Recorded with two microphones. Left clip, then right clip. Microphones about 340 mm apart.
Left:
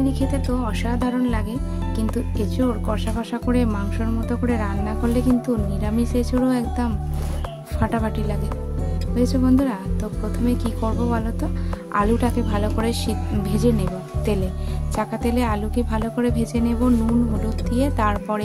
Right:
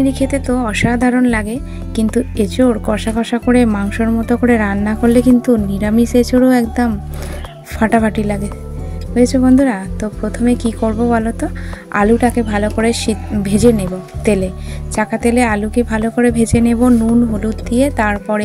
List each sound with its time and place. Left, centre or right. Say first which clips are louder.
0.0 s speech: right 8 dB; left